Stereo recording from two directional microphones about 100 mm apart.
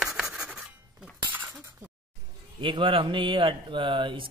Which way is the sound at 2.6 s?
60° right (ahead or behind).